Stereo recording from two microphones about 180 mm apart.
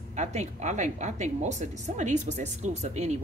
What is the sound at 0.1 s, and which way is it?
Speech, 40° right (ahead or behind).